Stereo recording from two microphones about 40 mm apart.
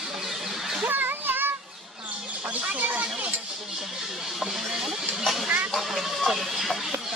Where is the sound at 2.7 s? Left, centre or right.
Right.